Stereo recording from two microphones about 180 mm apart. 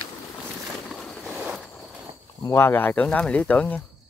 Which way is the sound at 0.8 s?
5° left (ahead or behind).